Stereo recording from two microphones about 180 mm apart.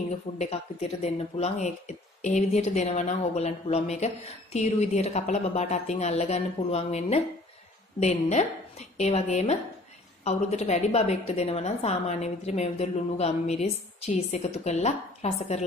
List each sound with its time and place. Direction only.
0.4 s speech: 35° left (ahead or behind)